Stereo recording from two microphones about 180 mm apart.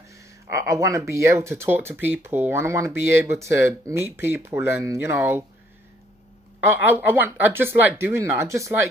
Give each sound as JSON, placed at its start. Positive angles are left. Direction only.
{"t": 0.1, "sound": "speech", "side_deg": -15}
{"t": 6.6, "sound": "speech", "side_deg": -10}